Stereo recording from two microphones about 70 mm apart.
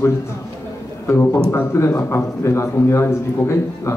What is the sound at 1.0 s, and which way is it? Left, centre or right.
A man's voice, left.